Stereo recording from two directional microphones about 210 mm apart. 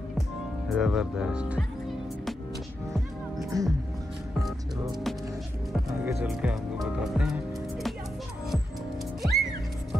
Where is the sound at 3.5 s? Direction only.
15° right (ahead or behind).